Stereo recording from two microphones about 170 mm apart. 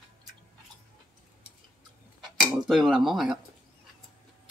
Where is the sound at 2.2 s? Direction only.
Centre (ahead or behind).